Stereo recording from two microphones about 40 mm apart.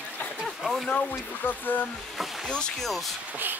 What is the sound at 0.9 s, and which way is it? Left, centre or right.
Speech, left.